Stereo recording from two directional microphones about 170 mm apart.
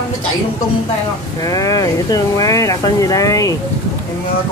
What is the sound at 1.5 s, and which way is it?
Speech, 20° left (ahead or behind).